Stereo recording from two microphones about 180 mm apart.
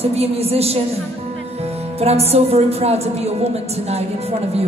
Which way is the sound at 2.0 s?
35° right (ahead or behind).